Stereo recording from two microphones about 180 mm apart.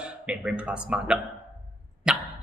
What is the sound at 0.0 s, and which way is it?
A man's voice, 5° right (ahead or behind).